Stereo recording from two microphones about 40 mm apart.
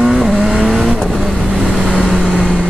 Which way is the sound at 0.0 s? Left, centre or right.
Centre.